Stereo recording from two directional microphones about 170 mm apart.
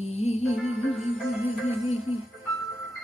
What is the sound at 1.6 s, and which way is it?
Music, 40° left (ahead or behind).